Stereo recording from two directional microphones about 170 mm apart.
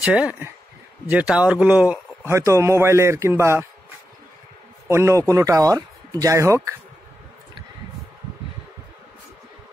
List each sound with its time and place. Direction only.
0.0 s a man's voice: 5° right (ahead or behind)
4.8 s a man's voice: 15° right (ahead or behind)